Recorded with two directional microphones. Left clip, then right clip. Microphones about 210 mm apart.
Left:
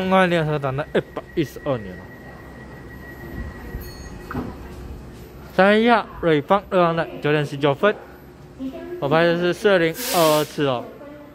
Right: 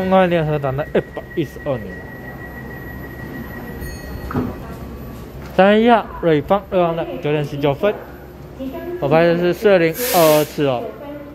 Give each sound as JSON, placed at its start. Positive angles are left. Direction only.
{"t": 0.0, "sound": "speech", "side_deg": 10}
{"t": 1.1, "sound": "speech", "side_deg": 25}
{"t": 5.6, "sound": "speech", "side_deg": 10}
{"t": 9.0, "sound": "speech", "side_deg": 10}